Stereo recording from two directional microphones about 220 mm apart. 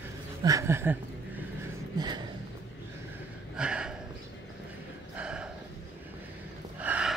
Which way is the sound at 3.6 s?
5° right (ahead or behind).